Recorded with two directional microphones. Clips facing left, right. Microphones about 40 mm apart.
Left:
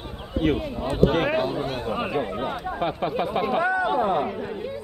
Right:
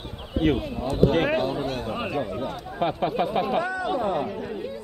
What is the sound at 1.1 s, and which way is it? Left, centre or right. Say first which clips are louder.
Speech: even; centre.